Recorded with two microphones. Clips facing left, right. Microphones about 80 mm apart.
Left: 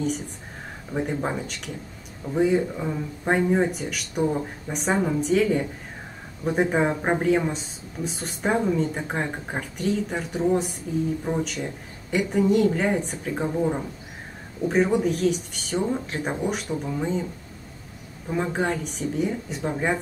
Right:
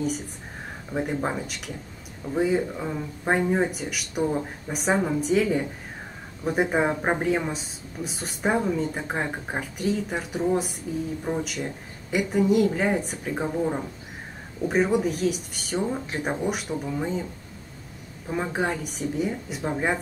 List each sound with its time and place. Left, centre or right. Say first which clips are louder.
0.9 s speech: even; centre
14.7 s speech: left 1 dB; centre
18.3 s speech: left 2 dB; centre